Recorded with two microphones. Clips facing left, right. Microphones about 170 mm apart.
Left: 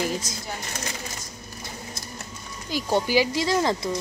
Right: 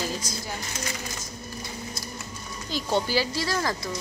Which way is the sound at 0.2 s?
25° left (ahead or behind).